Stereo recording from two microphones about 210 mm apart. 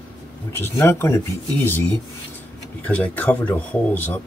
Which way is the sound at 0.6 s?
10° left (ahead or behind).